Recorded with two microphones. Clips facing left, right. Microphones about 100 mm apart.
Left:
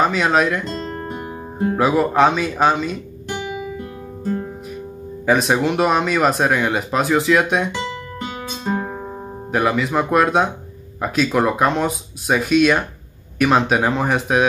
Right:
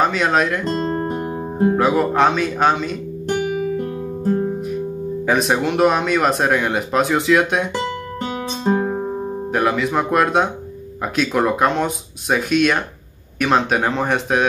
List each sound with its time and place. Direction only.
0.0 s speech: centre (ahead or behind)
0.7 s guitar: 40° right (ahead or behind)
1.8 s speech: centre (ahead or behind)
3.3 s guitar: 50° right (ahead or behind)
5.2 s speech: centre (ahead or behind)
8.3 s guitar: 40° right (ahead or behind)
9.5 s speech: centre (ahead or behind)